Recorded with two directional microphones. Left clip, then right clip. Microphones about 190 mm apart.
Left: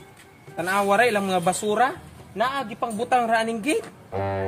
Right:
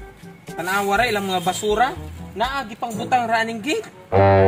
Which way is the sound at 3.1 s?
35° left (ahead or behind).